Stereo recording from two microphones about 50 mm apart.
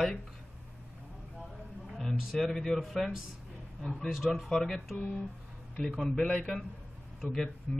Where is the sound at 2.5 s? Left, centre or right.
Centre.